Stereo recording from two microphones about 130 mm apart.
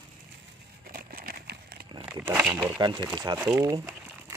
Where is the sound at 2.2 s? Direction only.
15° right (ahead or behind).